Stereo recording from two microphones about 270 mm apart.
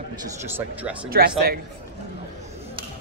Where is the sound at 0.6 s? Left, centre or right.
Centre.